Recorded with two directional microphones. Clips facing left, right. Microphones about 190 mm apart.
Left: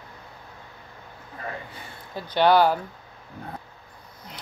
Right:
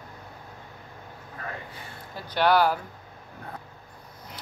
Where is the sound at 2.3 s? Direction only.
25° left (ahead or behind).